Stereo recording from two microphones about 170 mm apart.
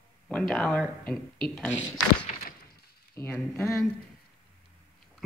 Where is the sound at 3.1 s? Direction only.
10° left (ahead or behind).